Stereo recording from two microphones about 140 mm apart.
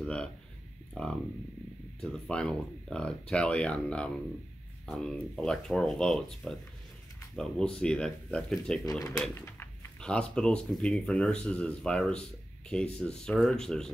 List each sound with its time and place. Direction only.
0.0 s speech: 5° left (ahead or behind)
9.3 s a sound: 15° left (ahead or behind)
9.9 s speech: 5° left (ahead or behind)